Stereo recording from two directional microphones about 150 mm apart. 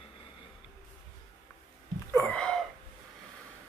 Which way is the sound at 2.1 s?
5° left (ahead or behind).